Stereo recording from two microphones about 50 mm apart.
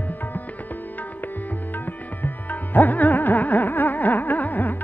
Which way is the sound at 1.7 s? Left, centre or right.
Left.